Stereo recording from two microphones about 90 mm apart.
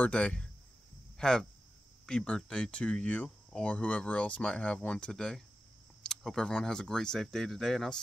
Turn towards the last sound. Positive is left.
turn(degrees=5)  # may be behind; listen again after turning